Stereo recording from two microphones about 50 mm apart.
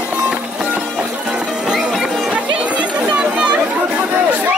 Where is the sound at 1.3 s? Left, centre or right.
Centre.